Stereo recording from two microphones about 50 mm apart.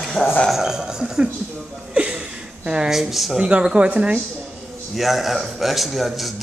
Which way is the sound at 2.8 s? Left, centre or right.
Centre.